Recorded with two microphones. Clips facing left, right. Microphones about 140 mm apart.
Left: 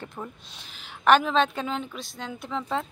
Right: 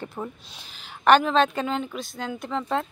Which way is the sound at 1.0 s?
Centre (ahead or behind).